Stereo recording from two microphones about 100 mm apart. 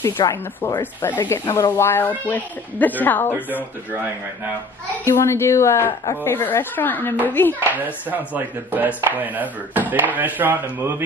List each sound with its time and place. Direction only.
0.2 s speech: 45° left (ahead or behind)
1.0 s speech: 25° left (ahead or behind)
5.0 s speech: 30° left (ahead or behind)
7.7 s speech: 15° right (ahead or behind)